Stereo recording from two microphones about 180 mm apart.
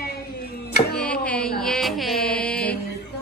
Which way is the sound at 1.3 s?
5° left (ahead or behind).